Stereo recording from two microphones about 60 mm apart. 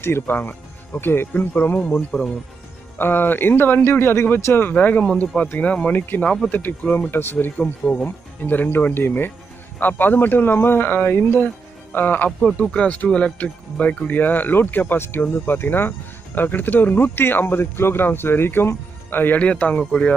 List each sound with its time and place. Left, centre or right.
0.0 s speech: left
2.1 s speech: centre
3.0 s speech: left
4.7 s speech: left
6.2 s speech: centre
6.5 s speech: left
12.3 s speech: centre
12.6 s speech: centre; by 19.4 s left
19.4 s speech: left